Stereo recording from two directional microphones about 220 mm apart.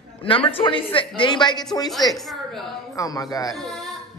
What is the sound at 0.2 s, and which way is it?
A man's voice, 25° left (ahead or behind).